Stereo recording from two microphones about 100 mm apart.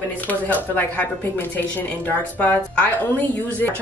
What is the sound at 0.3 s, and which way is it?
Speech, 15° left (ahead or behind).